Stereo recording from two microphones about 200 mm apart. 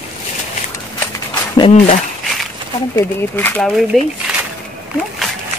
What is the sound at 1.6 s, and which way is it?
Speech, 30° left (ahead or behind).